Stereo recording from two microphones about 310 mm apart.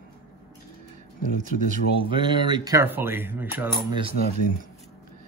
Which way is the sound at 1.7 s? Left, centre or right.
Centre.